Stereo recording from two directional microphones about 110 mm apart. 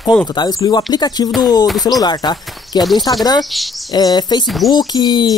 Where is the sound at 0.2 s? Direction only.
35° left (ahead or behind).